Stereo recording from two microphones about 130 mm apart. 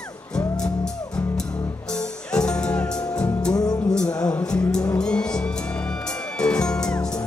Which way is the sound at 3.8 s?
5° left (ahead or behind).